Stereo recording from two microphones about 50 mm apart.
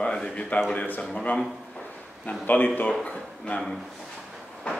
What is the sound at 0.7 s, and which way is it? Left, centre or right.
A man's voice, left.